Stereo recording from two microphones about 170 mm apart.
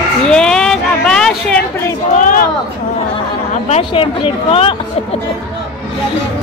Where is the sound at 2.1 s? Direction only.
50° left (ahead or behind).